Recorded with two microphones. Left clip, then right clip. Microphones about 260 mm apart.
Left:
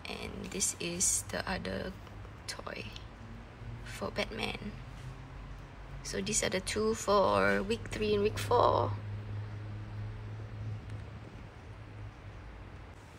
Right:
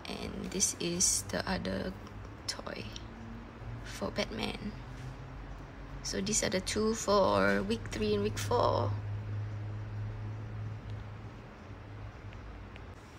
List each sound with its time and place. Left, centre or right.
0.0 s a sound: centre
0.5 s speech: centre
6.0 s speech: centre